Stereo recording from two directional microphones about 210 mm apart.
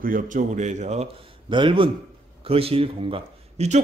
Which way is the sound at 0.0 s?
40° right (ahead or behind).